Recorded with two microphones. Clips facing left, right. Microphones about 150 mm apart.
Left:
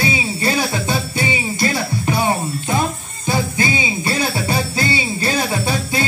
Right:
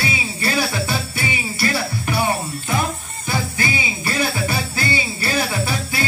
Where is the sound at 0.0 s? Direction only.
20° left (ahead or behind).